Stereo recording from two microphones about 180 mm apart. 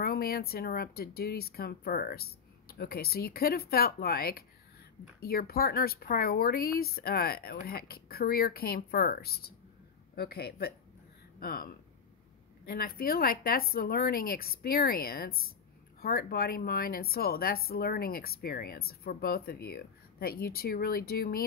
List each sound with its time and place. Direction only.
0.0 s speech: 55° left (ahead or behind)